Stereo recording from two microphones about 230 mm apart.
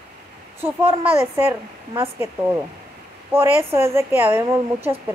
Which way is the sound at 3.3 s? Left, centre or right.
Centre.